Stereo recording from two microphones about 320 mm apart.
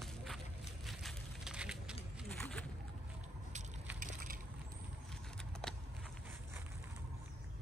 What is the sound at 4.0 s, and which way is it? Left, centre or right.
Crushing, right.